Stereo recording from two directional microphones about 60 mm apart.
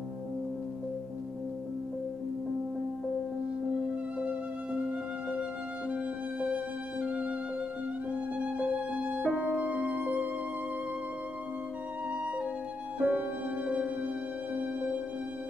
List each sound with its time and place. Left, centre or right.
6.5 s music: right
8.4 s music: right
13.0 s music: right